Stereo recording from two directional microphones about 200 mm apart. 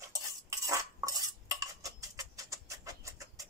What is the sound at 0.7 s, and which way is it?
Cutlery, 15° right (ahead or behind).